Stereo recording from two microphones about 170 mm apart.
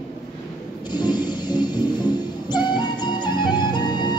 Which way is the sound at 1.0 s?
25° left (ahead or behind).